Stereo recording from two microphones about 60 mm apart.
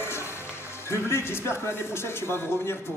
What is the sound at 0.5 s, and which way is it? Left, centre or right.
Speech, left.